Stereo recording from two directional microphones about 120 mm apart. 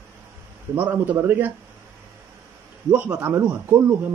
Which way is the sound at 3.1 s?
15° right (ahead or behind).